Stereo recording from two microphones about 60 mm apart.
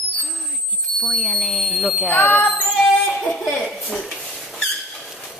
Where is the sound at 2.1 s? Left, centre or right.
Left.